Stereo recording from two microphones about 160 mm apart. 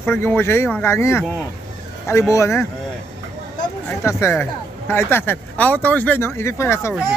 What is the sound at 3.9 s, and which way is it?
Speech, 15° left (ahead or behind).